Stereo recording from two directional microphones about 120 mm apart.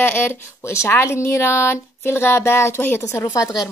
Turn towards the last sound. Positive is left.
turn(degrees=30)  # may be behind; listen again after turning